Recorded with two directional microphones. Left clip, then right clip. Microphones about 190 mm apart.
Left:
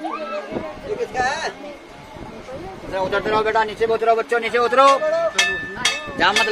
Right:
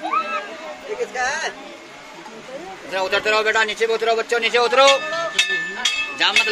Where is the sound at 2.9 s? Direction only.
15° left (ahead or behind); by 4.8 s 45° left (ahead or behind).